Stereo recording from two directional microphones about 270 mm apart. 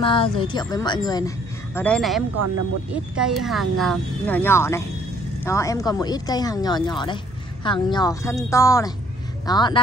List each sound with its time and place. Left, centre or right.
0.0 s speech: centre
1.8 s speech: centre